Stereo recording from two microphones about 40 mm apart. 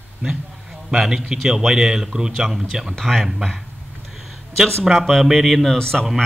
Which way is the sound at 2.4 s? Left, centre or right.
Centre.